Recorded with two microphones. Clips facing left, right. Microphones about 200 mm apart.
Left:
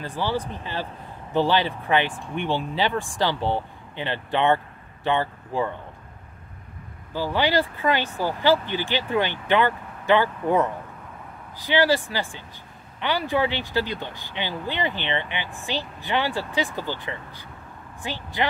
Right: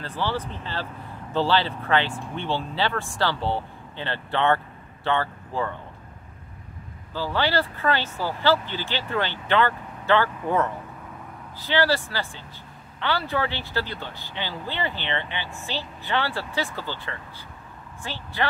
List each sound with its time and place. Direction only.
0.0 s speech: 15° left (ahead or behind)
7.2 s speech: 15° left (ahead or behind)